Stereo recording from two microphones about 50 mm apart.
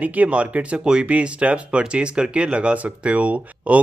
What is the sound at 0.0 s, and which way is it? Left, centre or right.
Speech, right.